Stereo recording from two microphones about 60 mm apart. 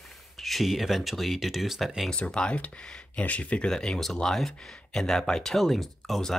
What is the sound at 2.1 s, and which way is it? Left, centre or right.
Speech, centre.